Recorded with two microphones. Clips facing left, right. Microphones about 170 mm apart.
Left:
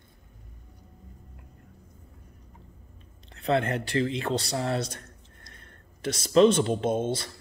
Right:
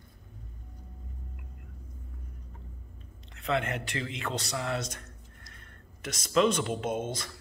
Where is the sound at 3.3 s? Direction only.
35° left (ahead or behind).